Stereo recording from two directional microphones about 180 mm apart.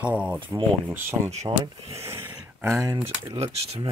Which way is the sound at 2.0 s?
15° right (ahead or behind).